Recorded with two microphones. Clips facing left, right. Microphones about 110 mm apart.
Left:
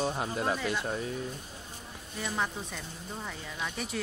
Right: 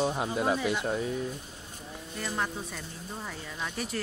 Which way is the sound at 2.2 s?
Centre (ahead or behind).